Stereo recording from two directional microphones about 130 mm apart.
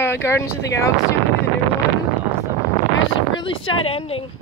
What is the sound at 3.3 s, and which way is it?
Speech, 40° left (ahead or behind).